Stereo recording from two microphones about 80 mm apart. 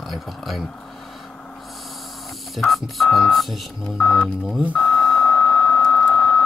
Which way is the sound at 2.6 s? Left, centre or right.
Centre.